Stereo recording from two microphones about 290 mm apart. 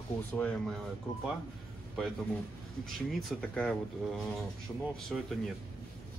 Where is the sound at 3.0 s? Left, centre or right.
Centre.